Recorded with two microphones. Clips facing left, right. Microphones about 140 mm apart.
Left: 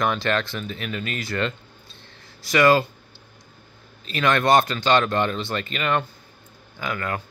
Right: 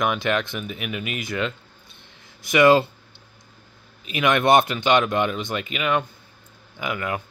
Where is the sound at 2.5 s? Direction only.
20° right (ahead or behind).